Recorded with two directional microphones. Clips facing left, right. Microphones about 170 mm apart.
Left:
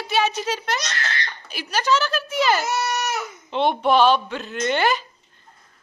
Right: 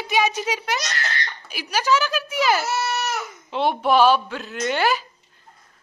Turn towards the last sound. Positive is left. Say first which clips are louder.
# left 1 dB
turn(degrees=-5)  # may be behind; listen again after turning